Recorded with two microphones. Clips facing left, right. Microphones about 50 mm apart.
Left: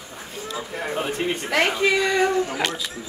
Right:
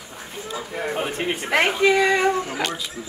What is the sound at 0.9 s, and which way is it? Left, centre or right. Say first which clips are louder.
Speech: left 1 dB; centre.